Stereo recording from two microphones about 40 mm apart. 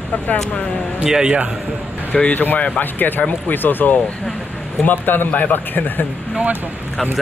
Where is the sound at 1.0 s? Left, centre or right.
Centre.